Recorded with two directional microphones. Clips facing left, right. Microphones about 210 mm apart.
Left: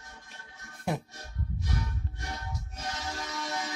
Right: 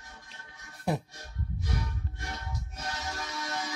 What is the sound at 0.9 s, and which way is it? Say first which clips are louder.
Music: right 2 dB; centre (ahead or behind).